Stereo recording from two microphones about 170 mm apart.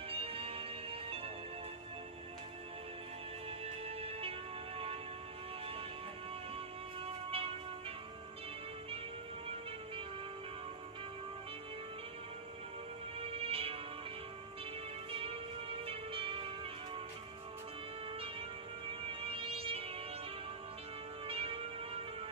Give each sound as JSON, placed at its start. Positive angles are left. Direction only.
{"t": 0.1, "sound": "music", "side_deg": -35}
{"t": 3.4, "sound": "music", "side_deg": -35}
{"t": 7.2, "sound": "music", "side_deg": -35}
{"t": 13.2, "sound": "music", "side_deg": -35}
{"t": 15.0, "sound": "music", "side_deg": -35}
{"t": 18.9, "sound": "music", "side_deg": -35}
{"t": 21.3, "sound": "music", "side_deg": -35}